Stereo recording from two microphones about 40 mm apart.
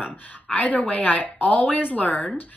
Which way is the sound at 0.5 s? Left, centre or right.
Left.